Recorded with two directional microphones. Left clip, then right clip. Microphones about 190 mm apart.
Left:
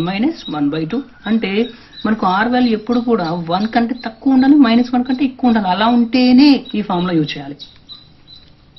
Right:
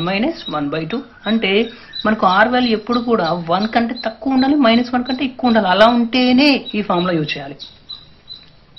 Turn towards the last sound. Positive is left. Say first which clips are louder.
# left 1 dB
turn(degrees=15)  # may be behind; listen again after turning